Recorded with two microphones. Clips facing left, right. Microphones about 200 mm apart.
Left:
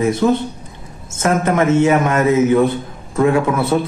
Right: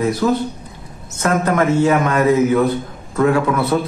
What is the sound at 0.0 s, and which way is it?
Speech, 25° left (ahead or behind).